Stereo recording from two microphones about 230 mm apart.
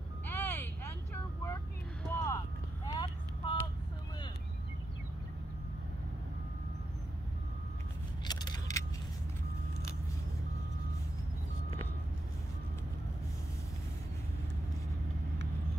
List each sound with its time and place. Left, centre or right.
0.3 s vehicle: centre
2.0 s clip-clop: centre
2.9 s vehicle: centre
8.2 s a sound: centre